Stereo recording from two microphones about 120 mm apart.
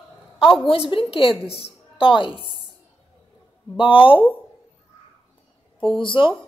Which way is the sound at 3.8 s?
45° left (ahead or behind).